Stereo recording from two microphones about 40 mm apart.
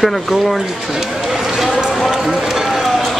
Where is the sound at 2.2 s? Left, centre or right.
Centre.